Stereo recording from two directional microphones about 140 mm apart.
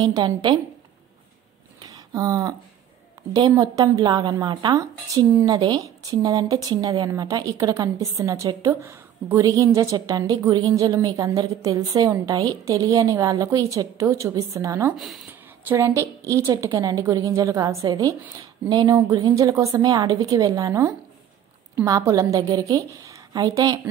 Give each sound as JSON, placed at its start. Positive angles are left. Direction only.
{"t": 0.0, "sound": "a woman's voice", "side_deg": -30}
{"t": 1.8, "sound": "a sound", "side_deg": -25}
{"t": 3.3, "sound": "a woman's voice", "side_deg": -25}